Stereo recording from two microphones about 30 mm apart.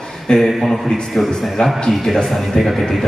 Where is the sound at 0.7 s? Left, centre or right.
Centre.